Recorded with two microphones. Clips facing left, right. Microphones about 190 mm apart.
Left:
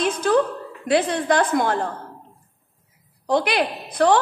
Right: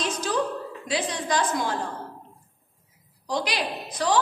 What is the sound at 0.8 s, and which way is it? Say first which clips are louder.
A woman's voice: left 9 dB; 55° left (ahead or behind).